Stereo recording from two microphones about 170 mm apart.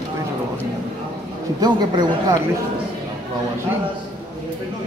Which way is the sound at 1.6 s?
25° right (ahead or behind).